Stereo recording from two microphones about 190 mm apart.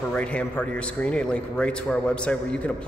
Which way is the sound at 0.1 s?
5° left (ahead or behind).